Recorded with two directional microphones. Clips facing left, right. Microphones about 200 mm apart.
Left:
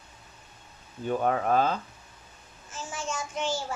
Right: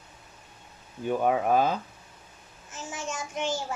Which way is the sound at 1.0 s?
10° right (ahead or behind).